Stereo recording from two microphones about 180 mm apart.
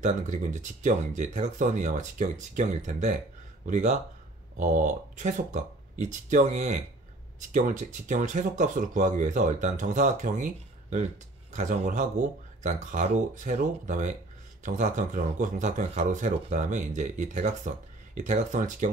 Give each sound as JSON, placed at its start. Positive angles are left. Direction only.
{"t": 0.0, "sound": "speech", "side_deg": -45}